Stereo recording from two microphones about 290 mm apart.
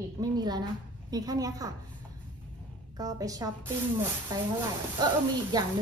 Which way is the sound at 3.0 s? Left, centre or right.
Centre.